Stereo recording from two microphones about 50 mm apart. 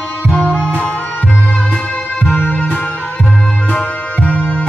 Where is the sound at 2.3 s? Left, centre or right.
Left.